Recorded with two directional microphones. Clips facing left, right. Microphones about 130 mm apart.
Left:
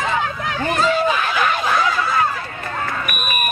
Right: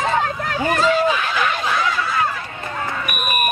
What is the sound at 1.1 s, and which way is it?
Snicker, 45° left (ahead or behind).